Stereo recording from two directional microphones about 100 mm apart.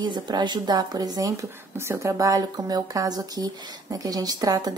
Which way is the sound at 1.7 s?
25° right (ahead or behind).